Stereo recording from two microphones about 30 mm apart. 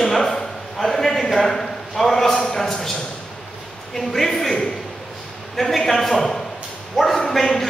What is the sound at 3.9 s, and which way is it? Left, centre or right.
A man's voice, centre.